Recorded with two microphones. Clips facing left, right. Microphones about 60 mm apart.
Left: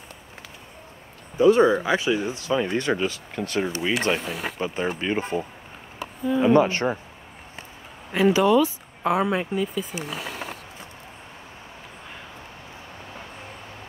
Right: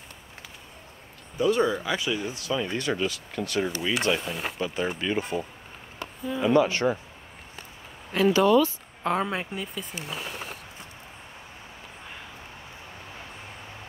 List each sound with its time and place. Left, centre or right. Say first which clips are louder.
1.4 s speech: left 7 dB; left
6.4 s speech: left 2 dB; left
8.1 s speech: left 2 dB; centre